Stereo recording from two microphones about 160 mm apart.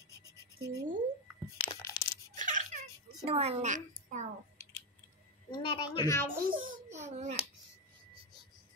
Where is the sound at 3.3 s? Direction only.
40° right (ahead or behind).